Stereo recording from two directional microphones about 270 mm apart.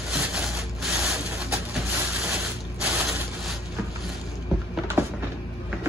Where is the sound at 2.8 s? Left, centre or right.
Centre.